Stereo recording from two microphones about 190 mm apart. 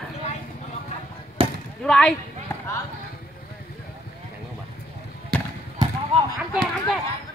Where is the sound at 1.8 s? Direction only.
5° left (ahead or behind).